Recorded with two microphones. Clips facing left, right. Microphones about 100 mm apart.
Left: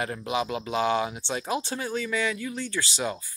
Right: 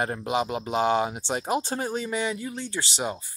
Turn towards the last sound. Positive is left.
turn(degrees=-25)  # may be behind; listen again after turning